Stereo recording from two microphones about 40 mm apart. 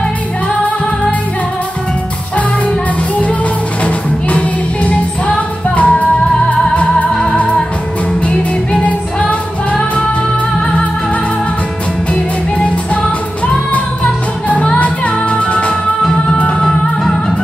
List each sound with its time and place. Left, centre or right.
3.8 s music: left
8.8 s music: left
12.5 s music: left
14.6 s music: left